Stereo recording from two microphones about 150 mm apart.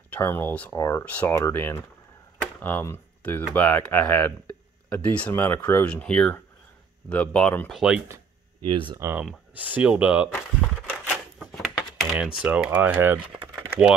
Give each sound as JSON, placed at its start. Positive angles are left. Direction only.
{"t": 0.1, "sound": "speech", "side_deg": 15}
{"t": 8.6, "sound": "speech", "side_deg": -35}
{"t": 9.0, "sound": "speech", "side_deg": -10}
{"t": 10.9, "sound": "a sound", "side_deg": -5}
{"t": 12.4, "sound": "speech", "side_deg": -5}
{"t": 13.6, "sound": "typing", "side_deg": -5}